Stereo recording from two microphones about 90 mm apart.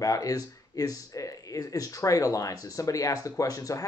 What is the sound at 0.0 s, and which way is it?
Speech, 40° left (ahead or behind).